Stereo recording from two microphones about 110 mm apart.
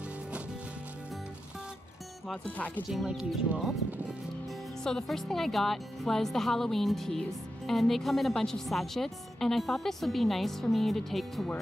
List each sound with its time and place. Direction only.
2.4 s speech: 15° left (ahead or behind)
2.9 s a woman's voice: centre (ahead or behind)
4.8 s a woman's voice: 5° left (ahead or behind)